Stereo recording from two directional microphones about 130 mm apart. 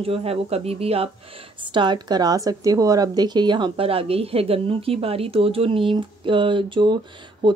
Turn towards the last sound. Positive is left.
turn(degrees=-40)  # may be behind; listen again after turning